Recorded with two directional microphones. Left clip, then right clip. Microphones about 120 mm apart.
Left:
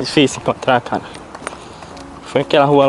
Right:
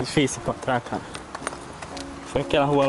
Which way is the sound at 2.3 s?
20° left (ahead or behind).